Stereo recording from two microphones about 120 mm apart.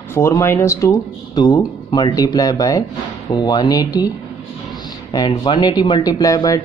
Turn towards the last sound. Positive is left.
turn(degrees=30)  # may be behind; listen again after turning